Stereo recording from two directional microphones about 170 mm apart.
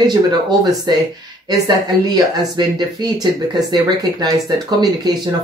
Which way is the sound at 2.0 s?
25° right (ahead or behind).